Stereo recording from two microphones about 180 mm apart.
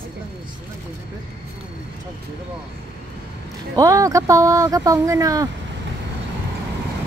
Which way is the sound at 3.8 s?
20° right (ahead or behind).